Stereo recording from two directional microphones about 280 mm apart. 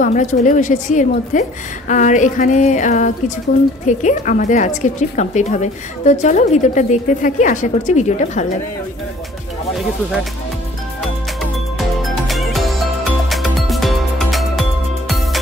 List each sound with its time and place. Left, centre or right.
0.0 s a woman's voice: left
12.0 s music: centre